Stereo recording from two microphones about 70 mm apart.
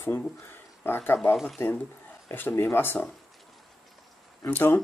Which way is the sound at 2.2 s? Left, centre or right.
Left.